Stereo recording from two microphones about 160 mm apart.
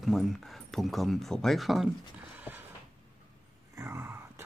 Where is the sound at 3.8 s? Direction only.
15° right (ahead or behind).